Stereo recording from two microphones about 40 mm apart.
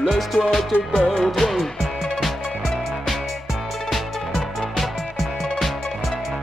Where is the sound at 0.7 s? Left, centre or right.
Left.